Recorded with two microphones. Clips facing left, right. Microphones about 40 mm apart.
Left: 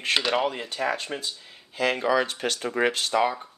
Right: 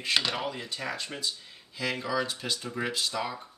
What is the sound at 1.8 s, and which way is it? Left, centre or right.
Speech, left.